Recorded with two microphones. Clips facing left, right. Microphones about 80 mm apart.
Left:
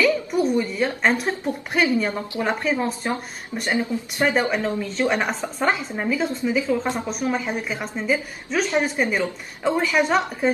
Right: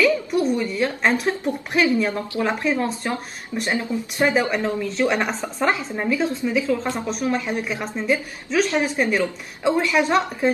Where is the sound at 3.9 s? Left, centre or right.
Left.